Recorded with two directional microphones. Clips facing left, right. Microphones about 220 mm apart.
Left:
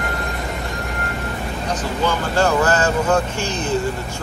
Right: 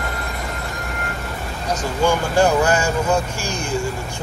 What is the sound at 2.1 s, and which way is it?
Speech, 15° right (ahead or behind).